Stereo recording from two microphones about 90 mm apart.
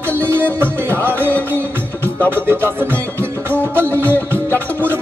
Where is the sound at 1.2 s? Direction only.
20° left (ahead or behind).